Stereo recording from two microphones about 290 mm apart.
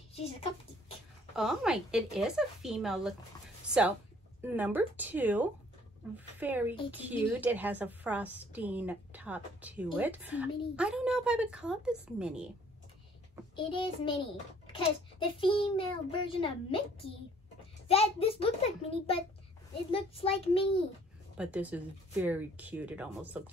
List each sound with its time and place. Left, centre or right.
0.1 s a child's voice: left
1.3 s a woman's voice: centre
13.6 s a child's voice: centre
17.8 s a child's voice: centre
21.4 s a woman's voice: centre